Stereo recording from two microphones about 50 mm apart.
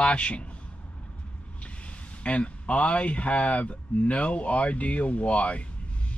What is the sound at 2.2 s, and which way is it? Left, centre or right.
Speech, left.